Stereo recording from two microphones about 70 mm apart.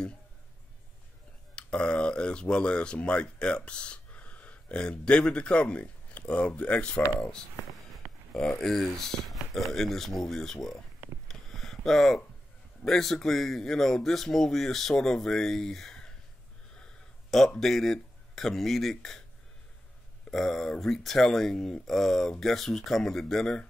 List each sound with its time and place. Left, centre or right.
1.5 s speech: centre
8.5 s speech: centre
11.2 s a sound: centre
12.8 s speech: centre
16.7 s a sound: centre
17.6 s speech: centre
20.2 s speech: centre